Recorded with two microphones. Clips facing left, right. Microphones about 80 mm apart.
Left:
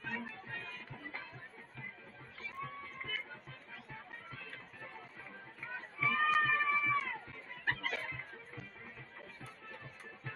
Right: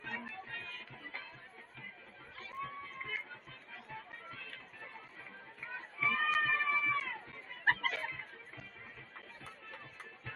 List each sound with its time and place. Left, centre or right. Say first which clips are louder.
0.0 s music: left 1 dB; centre
2.5 s a sound: right 2 dB; centre
4.3 s music: even; centre
5.8 s run: left 1 dB; centre
7.6 s music: right 5 dB; right
7.9 s music: even; centre